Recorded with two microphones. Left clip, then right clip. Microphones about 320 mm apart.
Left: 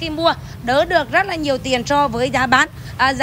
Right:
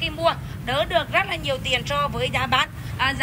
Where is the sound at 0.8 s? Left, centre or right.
Left.